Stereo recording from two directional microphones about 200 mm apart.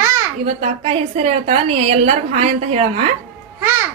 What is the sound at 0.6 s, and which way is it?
A woman's voice, 30° right (ahead or behind).